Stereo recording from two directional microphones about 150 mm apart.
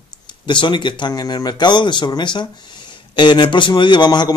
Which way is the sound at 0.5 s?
35° left (ahead or behind).